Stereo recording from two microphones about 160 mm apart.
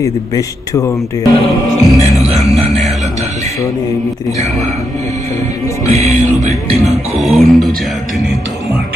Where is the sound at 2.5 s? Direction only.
Centre (ahead or behind).